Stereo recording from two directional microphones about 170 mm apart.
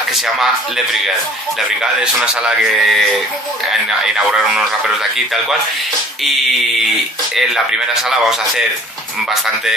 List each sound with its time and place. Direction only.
0.1 s speech: centre (ahead or behind)
1.8 s a man's voice: 5° right (ahead or behind)
4.0 s a man's voice: 5° right (ahead or behind)
7.3 s a man's voice: 5° right (ahead or behind)